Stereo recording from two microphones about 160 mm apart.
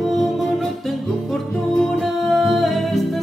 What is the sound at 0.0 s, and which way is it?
Music, centre (ahead or behind).